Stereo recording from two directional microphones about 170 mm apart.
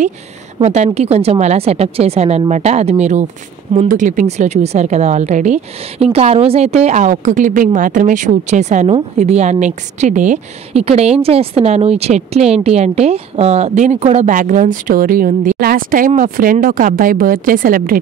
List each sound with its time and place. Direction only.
0.6 s a woman's voice: 40° right (ahead or behind); by 17.9 s 55° right (ahead or behind)